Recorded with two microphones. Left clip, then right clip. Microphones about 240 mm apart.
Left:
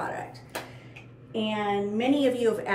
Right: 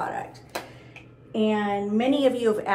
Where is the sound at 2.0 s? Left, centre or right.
Centre.